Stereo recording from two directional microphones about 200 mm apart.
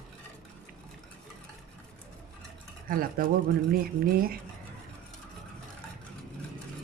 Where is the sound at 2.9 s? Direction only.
45° right (ahead or behind).